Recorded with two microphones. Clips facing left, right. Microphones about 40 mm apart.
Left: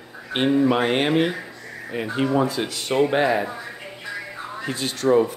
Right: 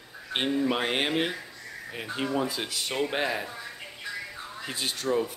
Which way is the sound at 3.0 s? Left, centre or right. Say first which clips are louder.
Left 10 dB; centre.